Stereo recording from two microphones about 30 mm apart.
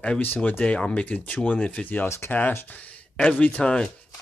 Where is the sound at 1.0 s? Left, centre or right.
Left.